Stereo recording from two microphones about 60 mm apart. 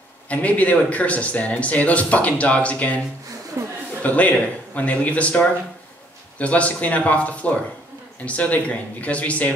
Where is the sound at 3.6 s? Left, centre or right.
Right.